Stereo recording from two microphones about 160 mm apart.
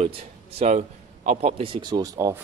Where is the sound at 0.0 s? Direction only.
40° right (ahead or behind); by 2.4 s 20° right (ahead or behind).